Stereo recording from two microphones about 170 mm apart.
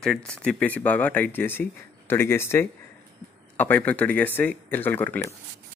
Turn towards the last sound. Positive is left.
turn(degrees=10)  # may be behind; listen again after turning